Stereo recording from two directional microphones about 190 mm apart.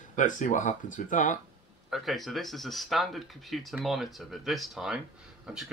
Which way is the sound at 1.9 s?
Centre (ahead or behind).